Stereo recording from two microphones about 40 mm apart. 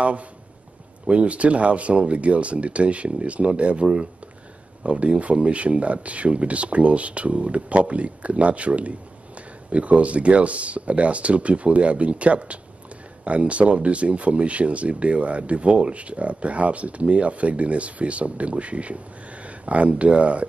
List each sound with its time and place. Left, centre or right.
0.0 s speech: right